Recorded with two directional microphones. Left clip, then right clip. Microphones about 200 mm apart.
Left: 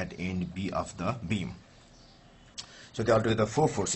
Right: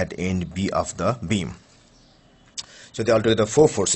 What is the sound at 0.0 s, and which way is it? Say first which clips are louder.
Speech: right 10 dB; 55° right (ahead or behind).